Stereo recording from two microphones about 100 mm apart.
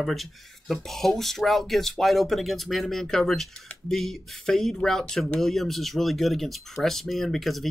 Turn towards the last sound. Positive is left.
turn(degrees=0)  # may be behind; listen again after turning